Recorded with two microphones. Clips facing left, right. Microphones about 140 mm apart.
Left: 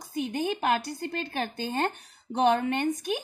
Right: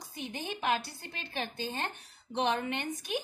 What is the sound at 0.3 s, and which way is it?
Speech, 50° left (ahead or behind).